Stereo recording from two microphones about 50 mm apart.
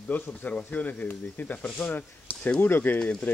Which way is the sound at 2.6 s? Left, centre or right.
Left.